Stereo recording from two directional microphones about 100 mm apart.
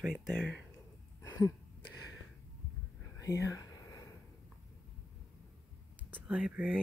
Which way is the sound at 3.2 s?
35° left (ahead or behind).